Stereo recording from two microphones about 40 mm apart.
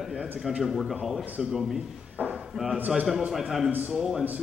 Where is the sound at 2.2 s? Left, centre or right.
Right.